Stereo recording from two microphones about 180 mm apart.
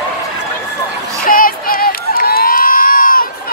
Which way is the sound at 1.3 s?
50° left (ahead or behind).